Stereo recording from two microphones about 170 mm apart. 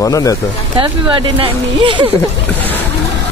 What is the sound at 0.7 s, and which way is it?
Speech, 30° right (ahead or behind).